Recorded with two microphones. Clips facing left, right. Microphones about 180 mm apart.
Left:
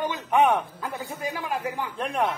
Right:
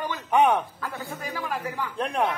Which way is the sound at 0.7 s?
20° left (ahead or behind).